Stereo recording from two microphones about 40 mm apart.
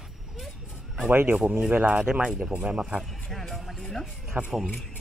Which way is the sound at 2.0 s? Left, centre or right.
Right.